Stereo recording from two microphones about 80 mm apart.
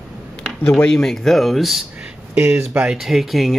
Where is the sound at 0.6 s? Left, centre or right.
Left.